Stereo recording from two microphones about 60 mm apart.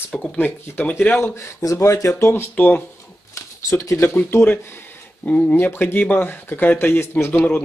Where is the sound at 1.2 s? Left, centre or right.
Left.